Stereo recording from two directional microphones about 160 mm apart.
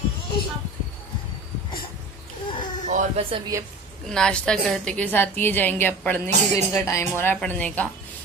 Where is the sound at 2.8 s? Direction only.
50° right (ahead or behind).